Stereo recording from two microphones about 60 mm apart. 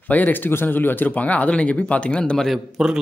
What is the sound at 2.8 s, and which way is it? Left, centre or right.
Speech, centre.